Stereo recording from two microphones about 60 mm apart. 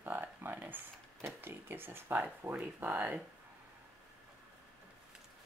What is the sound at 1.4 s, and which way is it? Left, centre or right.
Speech, right.